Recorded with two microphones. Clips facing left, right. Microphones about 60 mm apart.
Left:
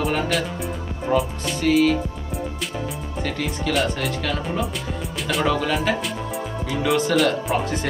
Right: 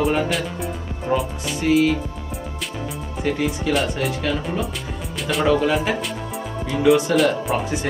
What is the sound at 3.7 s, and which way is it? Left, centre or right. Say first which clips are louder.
Speech: left 1 dB; centre.